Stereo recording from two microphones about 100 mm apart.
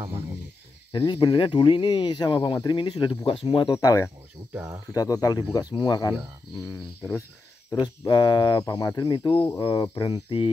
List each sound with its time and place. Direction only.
0.9 s speech: 55° left (ahead or behind)
3.3 s speech: 65° left (ahead or behind)
3.6 s speech: 40° left (ahead or behind)
6.6 s speech: 25° left (ahead or behind)
7.8 s speech: 45° left (ahead or behind)